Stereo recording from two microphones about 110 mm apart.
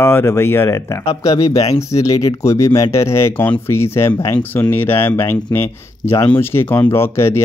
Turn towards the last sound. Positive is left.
turn(degrees=25)  # may be behind; listen again after turning